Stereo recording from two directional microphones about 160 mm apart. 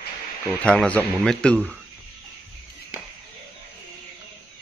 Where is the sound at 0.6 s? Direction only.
5° left (ahead or behind).